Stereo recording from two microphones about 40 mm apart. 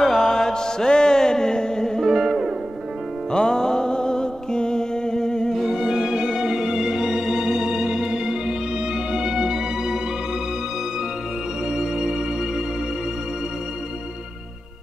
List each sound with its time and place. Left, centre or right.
0.0 s mantra: centre
2.0 s music: centre
3.3 s music: centre
5.8 s music: centre
11.7 s music: centre